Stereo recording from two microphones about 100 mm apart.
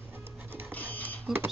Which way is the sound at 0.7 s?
15° left (ahead or behind).